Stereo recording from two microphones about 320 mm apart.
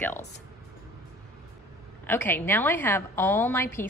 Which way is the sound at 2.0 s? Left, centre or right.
Centre.